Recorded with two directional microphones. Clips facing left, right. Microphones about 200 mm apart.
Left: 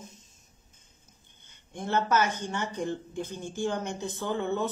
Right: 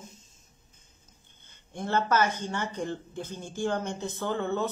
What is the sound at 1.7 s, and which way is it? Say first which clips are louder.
Speech: even; 15° left (ahead or behind).